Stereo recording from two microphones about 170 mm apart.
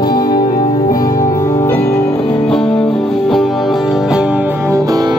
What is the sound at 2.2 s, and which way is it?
Music, 35° left (ahead or behind).